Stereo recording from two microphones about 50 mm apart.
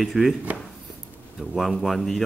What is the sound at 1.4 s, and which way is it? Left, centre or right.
Speech, centre.